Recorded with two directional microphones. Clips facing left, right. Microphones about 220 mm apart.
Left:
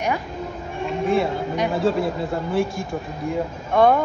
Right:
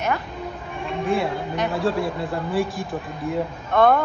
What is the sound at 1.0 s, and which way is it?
Speech, centre (ahead or behind).